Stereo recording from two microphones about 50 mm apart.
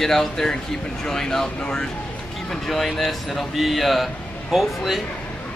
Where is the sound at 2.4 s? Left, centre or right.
Centre.